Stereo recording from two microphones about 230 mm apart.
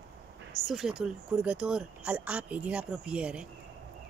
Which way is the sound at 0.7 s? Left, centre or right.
Centre.